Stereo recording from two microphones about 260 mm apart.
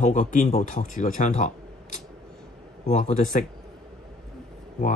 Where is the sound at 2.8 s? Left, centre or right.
Left.